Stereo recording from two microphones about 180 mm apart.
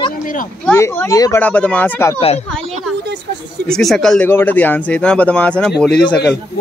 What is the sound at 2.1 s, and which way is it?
Speech, 35° left (ahead or behind).